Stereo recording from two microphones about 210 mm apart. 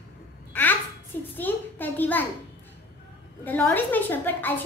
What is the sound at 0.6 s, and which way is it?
A woman's voice, 5° left (ahead or behind).